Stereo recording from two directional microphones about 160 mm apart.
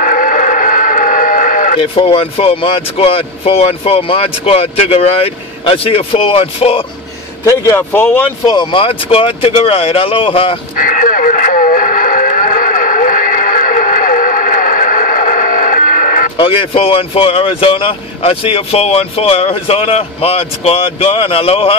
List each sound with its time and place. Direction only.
0.0 s a sound: 55° left (ahead or behind)
1.8 s speech: 35° left (ahead or behind)
7.4 s speech: 15° left (ahead or behind)
8.5 s speech: 30° left (ahead or behind)
10.8 s radio: 55° left (ahead or behind)
16.3 s speech: 35° left (ahead or behind)